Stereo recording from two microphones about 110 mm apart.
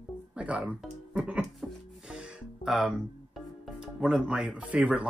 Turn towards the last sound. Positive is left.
turn(degrees=-10)  # may be behind; listen again after turning